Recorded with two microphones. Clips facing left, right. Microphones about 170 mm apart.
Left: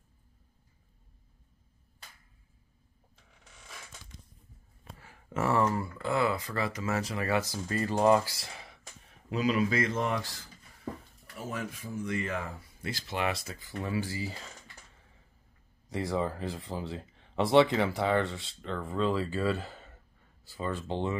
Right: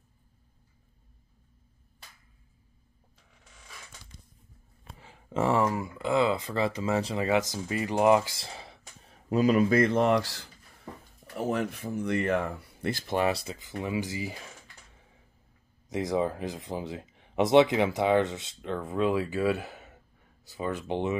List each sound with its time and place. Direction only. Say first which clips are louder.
4.9 s a sound: right 4 dB; 20° right (ahead or behind)
5.6 s speech: right 1 dB; 15° right (ahead or behind); by 9.2 s 30° right (ahead or behind)
9.3 s speech: right 6 dB; 45° right (ahead or behind); by 10.5 s 80° right
11.3 s speech: right 8 dB; 65° right (ahead or behind)
13.3 s speech: right 4 dB; 25° right (ahead or behind)
15.9 s speech: right 3 dB; 15° right (ahead or behind)